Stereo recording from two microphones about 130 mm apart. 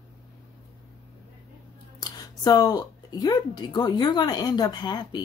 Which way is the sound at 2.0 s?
30° left (ahead or behind).